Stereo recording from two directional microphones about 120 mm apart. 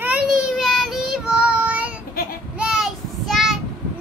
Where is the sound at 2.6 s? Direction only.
5° right (ahead or behind).